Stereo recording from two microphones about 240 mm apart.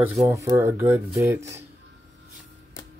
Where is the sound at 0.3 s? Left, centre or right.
Centre.